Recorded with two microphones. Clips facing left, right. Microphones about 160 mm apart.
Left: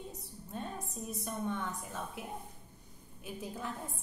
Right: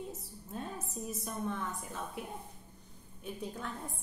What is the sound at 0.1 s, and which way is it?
A woman's voice, centre (ahead or behind).